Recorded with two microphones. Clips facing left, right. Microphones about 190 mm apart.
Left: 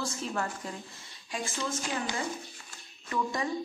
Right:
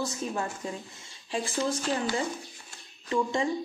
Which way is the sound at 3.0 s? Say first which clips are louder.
Right 5 dB; 25° right (ahead or behind).